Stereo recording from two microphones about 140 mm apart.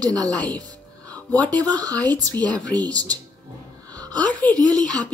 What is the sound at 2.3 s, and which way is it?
Speech, 10° left (ahead or behind).